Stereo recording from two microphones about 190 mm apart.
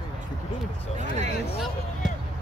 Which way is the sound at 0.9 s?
40° right (ahead or behind).